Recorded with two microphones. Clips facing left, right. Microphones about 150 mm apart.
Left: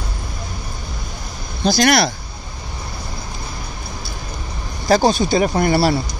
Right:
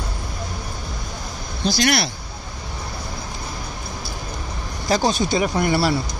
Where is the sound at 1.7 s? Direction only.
45° left (ahead or behind).